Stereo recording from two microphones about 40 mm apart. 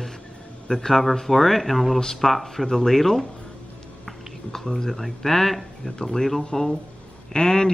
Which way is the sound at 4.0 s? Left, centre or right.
Centre.